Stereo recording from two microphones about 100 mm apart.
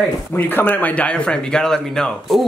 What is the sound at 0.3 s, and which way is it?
Speech, 20° left (ahead or behind).